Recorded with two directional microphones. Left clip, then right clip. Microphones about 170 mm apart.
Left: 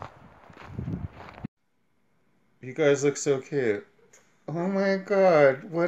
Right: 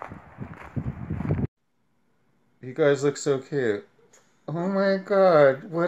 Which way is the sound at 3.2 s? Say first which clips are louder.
Right 1 dB; 5° left (ahead or behind).